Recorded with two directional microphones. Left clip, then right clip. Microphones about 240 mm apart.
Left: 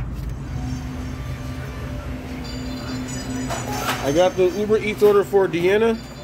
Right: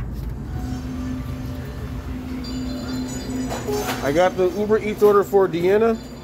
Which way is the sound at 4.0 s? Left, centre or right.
Centre.